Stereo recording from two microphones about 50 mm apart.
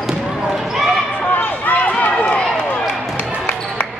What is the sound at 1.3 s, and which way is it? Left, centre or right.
Run, left.